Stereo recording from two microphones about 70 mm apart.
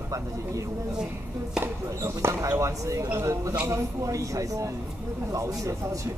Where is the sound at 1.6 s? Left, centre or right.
Right.